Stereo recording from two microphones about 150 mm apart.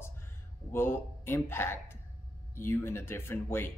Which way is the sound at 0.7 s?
15° left (ahead or behind).